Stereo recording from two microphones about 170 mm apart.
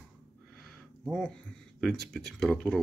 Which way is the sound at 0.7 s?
Centre (ahead or behind).